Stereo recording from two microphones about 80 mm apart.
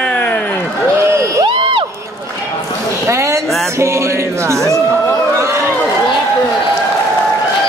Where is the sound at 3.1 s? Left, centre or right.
Right.